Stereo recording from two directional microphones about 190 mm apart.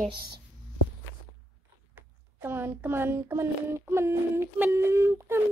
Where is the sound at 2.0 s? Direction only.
10° right (ahead or behind).